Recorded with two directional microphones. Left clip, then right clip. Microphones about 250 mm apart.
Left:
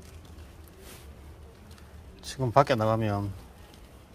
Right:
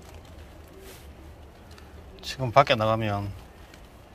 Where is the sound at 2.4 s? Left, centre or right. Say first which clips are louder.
Right 3 dB; left.